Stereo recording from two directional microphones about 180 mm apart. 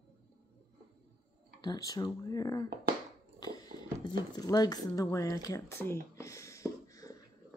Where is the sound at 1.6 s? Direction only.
20° left (ahead or behind).